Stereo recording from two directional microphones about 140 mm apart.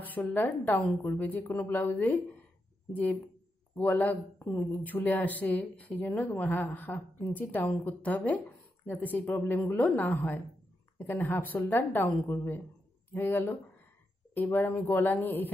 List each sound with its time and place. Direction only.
0.0 s a woman's voice: 10° left (ahead or behind)